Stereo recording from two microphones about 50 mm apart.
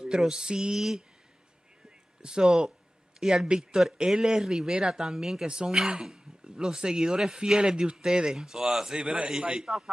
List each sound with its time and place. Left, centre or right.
0.0 s speech: centre
2.2 s speech: centre
5.5 s speech: centre
5.8 s speech: centre
9.0 s speech: centre